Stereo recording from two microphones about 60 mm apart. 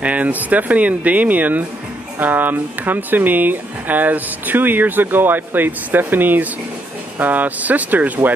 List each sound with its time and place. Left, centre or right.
0.0 s speech: right